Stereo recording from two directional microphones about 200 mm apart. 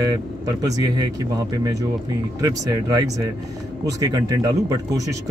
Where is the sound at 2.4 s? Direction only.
15° right (ahead or behind).